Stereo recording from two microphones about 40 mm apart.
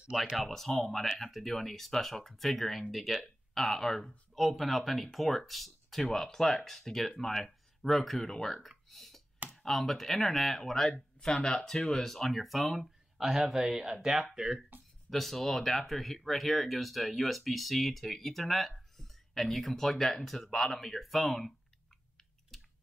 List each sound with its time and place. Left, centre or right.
0.4 s speech: centre
8.6 s a sound: centre
9.7 s speech: centre
15.0 s speech: centre
22.5 s chewing: centre